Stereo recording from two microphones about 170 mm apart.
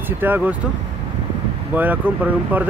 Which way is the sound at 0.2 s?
10° right (ahead or behind).